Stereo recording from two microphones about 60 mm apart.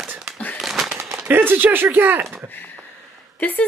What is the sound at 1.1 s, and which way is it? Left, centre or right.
Speech, right.